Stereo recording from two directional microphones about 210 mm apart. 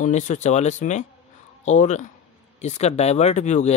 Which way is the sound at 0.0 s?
35° left (ahead or behind).